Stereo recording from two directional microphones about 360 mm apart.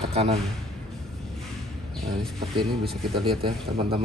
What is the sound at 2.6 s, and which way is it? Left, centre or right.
Speech, centre.